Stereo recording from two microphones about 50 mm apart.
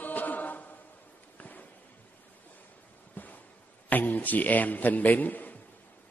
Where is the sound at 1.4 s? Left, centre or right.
Left.